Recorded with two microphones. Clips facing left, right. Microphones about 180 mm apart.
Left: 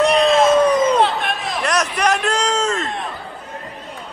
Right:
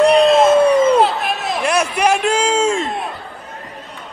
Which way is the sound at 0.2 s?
5° right (ahead or behind).